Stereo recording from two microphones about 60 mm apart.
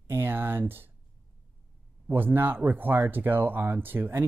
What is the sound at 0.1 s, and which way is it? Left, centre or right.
Speech, right.